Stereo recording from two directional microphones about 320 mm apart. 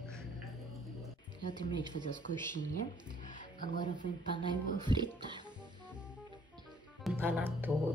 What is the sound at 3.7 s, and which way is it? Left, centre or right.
Speech, left.